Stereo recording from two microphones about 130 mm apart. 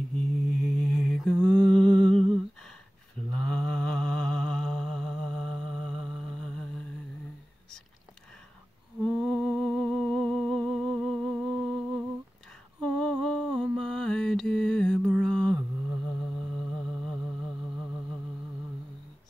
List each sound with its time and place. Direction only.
0.1 s mantra: 5° left (ahead or behind)
3.3 s mantra: 5° left (ahead or behind)
9.0 s humming: centre (ahead or behind)
12.8 s mantra: 5° left (ahead or behind)
16.1 s humming: 5° left (ahead or behind)